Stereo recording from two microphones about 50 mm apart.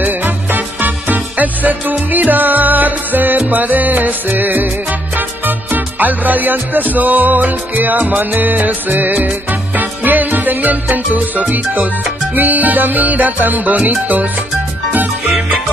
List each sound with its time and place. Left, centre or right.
0.0 s music: right